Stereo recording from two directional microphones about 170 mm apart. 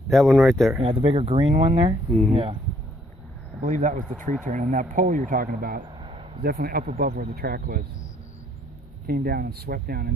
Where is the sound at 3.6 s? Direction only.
45° right (ahead or behind).